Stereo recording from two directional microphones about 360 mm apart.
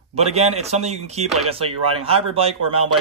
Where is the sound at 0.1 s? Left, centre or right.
Centre.